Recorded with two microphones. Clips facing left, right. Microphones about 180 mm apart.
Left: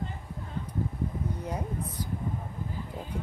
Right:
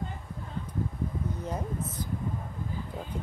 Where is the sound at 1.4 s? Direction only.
10° left (ahead or behind).